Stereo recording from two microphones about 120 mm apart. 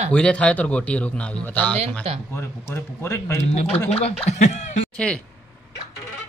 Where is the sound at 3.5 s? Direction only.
65° left (ahead or behind).